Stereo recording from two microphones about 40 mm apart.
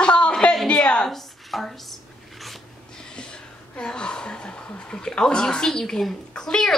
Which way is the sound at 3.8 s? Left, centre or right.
Left.